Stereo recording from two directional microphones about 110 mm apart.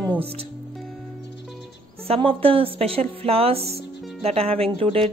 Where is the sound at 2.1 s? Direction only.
55° right (ahead or behind).